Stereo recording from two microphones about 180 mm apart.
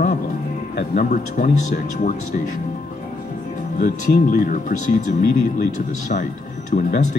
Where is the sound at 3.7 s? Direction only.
50° left (ahead or behind).